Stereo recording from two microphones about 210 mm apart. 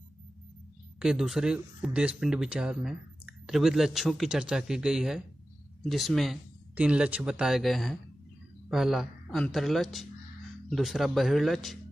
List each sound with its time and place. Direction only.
0.9 s speech: 5° right (ahead or behind)